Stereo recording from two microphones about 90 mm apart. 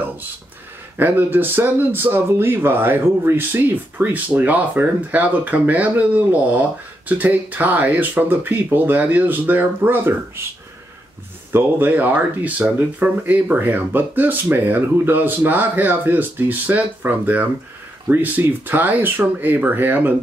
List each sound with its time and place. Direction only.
0.9 s speech: 20° right (ahead or behind)
11.5 s speech: 20° right (ahead or behind)